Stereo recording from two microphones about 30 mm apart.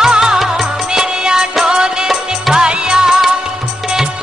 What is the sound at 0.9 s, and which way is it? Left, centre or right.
Music, right.